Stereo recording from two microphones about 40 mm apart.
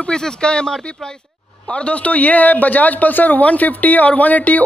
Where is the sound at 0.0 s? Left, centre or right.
Left.